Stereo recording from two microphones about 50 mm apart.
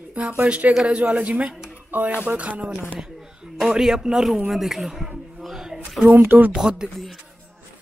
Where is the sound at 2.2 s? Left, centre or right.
Right.